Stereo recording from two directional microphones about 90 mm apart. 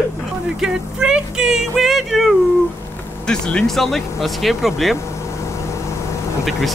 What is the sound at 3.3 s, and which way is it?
Speech, 10° left (ahead or behind).